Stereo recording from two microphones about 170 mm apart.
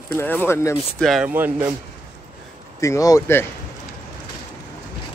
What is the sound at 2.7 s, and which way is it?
Speech, 20° left (ahead or behind).